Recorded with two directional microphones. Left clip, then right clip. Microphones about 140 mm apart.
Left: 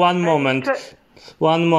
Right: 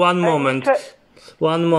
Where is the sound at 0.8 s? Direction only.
20° left (ahead or behind).